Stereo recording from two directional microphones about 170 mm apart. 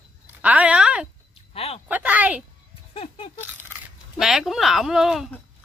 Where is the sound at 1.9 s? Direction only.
10° right (ahead or behind).